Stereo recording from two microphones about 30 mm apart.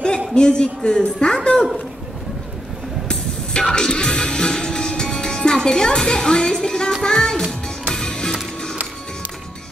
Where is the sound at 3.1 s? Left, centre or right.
Left.